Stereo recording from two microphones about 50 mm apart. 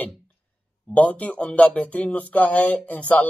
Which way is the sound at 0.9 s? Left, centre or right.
Left.